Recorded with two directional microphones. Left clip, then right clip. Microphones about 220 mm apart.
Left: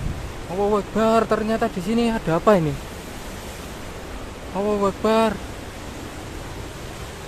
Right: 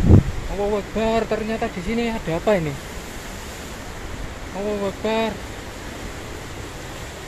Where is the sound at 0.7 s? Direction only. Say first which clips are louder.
Left 3 dB; 25° left (ahead or behind).